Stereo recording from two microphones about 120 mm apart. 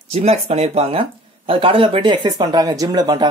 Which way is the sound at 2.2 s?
35° right (ahead or behind).